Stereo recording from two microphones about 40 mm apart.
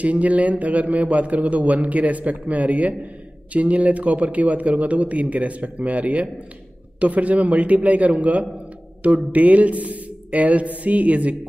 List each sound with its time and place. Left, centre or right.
0.0 s a man's voice: right